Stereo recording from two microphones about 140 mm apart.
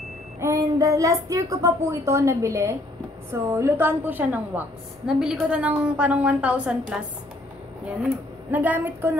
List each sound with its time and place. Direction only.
0.4 s a woman's voice: 20° right (ahead or behind)